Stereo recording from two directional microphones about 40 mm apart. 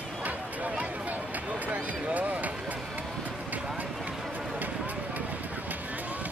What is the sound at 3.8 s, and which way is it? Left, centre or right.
Run, right.